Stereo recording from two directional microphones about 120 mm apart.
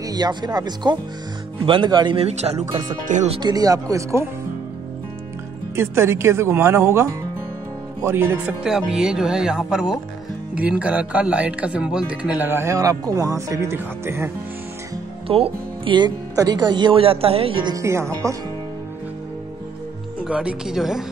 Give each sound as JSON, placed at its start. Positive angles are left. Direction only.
{"t": 0.0, "sound": "speech", "side_deg": -35}
{"t": 2.1, "sound": "speech", "side_deg": -60}
{"t": 3.3, "sound": "speech", "side_deg": -35}
{"t": 5.8, "sound": "speech", "side_deg": -20}
{"t": 8.6, "sound": "speech", "side_deg": -5}
{"t": 15.2, "sound": "speech", "side_deg": -50}
{"t": 17.7, "sound": "speech", "side_deg": -25}
{"t": 20.2, "sound": "speech", "side_deg": -10}